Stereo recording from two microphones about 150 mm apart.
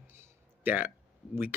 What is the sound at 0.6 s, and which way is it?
Speech, 10° right (ahead or behind).